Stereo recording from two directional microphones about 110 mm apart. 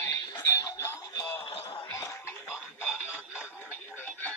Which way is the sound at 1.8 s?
20° left (ahead or behind).